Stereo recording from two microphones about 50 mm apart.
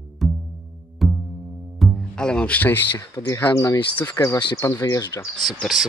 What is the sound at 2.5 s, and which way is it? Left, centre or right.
Speech, left.